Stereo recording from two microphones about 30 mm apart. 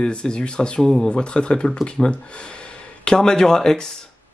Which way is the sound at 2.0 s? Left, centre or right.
Centre.